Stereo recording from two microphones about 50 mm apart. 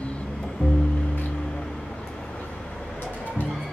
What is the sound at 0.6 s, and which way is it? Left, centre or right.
Music, left.